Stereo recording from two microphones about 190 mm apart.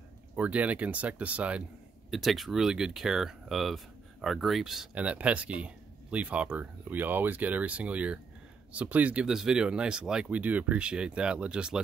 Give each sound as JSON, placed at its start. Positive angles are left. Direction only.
{"t": 0.4, "sound": "speech", "side_deg": -5}